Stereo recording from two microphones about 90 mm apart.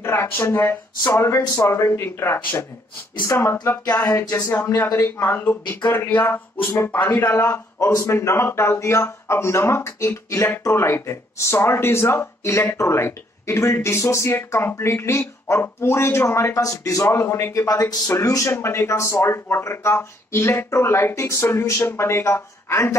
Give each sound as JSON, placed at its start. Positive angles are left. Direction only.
{"t": 0.0, "sound": "speech", "side_deg": 25}
{"t": 5.1, "sound": "speech", "side_deg": 20}